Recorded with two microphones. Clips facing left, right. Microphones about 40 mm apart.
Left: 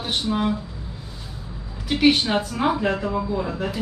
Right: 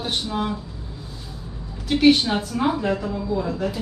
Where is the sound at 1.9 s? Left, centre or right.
Centre.